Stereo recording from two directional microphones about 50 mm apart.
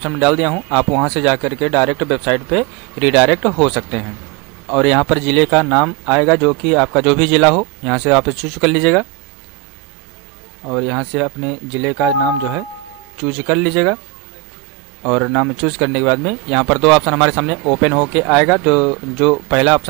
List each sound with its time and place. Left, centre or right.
0.0 s speech: centre
10.6 s speech: centre
13.2 s speech: centre
15.0 s speech: centre